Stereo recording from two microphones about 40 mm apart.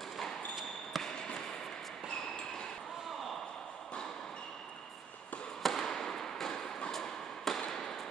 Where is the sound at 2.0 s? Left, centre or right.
Centre.